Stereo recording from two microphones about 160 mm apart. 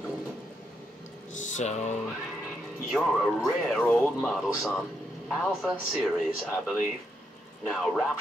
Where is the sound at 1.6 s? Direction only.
45° left (ahead or behind).